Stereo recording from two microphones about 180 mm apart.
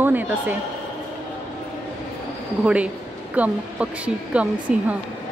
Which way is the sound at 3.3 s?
10° right (ahead or behind).